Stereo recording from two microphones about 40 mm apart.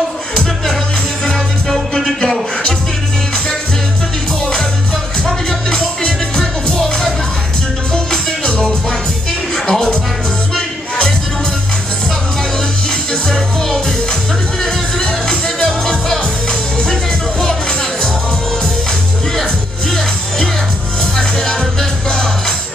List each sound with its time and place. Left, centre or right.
1.2 s music: centre
6.3 s music: centre
13.1 s music: centre
17.5 s music: centre